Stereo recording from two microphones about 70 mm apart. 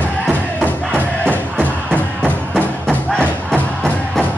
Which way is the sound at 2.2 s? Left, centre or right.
Centre.